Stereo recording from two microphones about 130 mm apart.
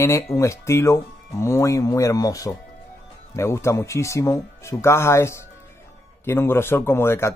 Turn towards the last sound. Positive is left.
turn(degrees=20)  # may be behind; listen again after turning